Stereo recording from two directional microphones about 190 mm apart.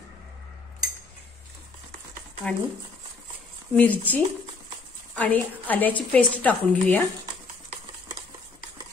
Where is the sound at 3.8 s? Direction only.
10° left (ahead or behind).